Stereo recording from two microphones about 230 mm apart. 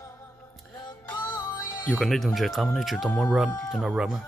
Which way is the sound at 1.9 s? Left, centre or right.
Centre.